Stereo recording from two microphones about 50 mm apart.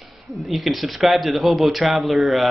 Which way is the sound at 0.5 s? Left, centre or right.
Centre.